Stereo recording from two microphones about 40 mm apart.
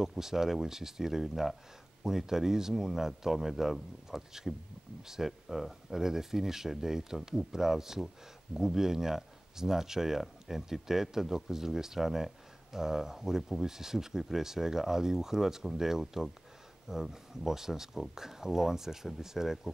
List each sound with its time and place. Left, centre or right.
0.2 s speech: centre